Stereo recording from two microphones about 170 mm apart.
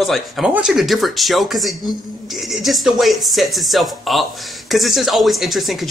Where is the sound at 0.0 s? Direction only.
Centre (ahead or behind).